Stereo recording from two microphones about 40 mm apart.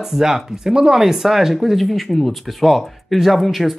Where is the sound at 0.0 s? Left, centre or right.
Centre.